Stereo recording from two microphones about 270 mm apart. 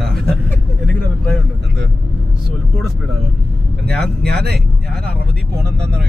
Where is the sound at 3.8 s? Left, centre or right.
Centre.